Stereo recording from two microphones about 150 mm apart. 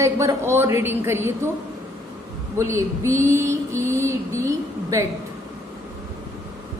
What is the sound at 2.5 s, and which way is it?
Mantra, 20° right (ahead or behind).